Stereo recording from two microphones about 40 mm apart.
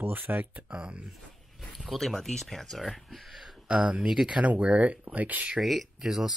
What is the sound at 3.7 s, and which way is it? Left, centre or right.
Speech, right.